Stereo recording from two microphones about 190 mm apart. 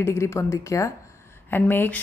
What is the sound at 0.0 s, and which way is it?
A woman's voice, 15° left (ahead or behind).